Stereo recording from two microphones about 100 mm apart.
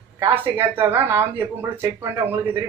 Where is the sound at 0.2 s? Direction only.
20° right (ahead or behind).